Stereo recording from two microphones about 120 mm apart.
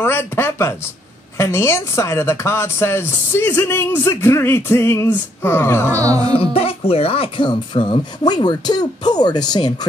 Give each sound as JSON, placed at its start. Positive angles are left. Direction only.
{"t": 0.0, "sound": "speech", "side_deg": 20}
{"t": 5.9, "sound": "speech", "side_deg": -30}
{"t": 6.3, "sound": "speech", "side_deg": 50}